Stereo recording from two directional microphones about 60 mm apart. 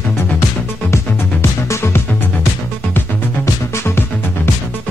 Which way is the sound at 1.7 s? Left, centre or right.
Left.